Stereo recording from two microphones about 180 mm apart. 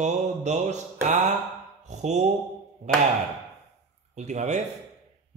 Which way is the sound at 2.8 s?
40° right (ahead or behind).